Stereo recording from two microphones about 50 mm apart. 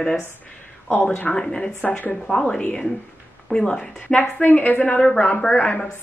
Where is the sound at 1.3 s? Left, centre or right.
Centre.